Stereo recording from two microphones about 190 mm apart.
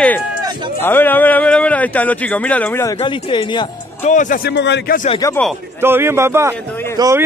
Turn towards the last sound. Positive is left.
turn(degrees=-15)  # may be behind; listen again after turning